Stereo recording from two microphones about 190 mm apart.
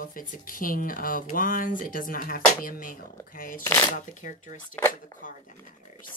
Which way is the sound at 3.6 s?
10° left (ahead or behind).